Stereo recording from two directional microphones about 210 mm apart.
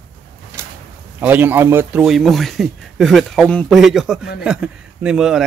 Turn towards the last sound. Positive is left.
turn(degrees=-5)  # may be behind; listen again after turning